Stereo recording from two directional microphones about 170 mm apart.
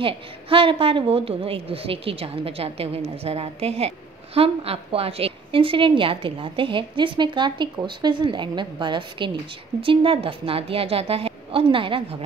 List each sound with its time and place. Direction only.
0.0 s a woman's voice: 30° right (ahead or behind)